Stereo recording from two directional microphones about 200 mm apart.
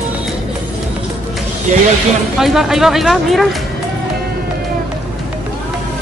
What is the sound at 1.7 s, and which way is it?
Speech, 35° right (ahead or behind).